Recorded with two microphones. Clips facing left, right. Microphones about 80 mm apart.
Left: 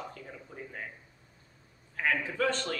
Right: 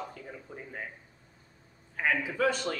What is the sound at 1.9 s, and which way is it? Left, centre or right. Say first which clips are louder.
Speech: right 1 dB; centre.